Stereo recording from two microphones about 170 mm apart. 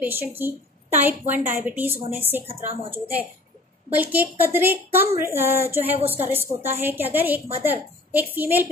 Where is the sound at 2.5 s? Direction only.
35° right (ahead or behind).